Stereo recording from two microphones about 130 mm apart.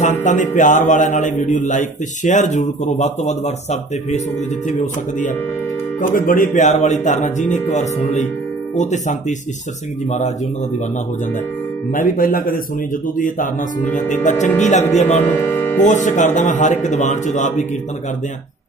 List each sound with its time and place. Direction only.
0.0 s a man's voice: 70° left (ahead or behind)
4.6 s a man's voice: 75° left (ahead or behind)
5.9 s a man's voice: 90° left; by 9.1 s 65° left (ahead or behind)
11.9 s speech: 90° left
13.9 s a man's voice: 70° left (ahead or behind)
15.3 s speech: 15° left (ahead or behind)
15.9 s a man's voice: 70° left (ahead or behind)